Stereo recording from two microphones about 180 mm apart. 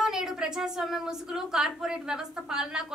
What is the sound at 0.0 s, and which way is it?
A woman's voice, 5° right (ahead or behind).